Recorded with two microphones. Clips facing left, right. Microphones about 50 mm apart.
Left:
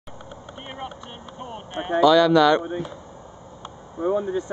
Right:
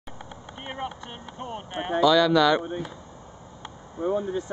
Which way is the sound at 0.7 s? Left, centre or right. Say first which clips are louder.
Right 2 dB; right.